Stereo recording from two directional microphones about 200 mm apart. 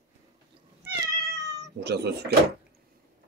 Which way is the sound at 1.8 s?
55° right (ahead or behind).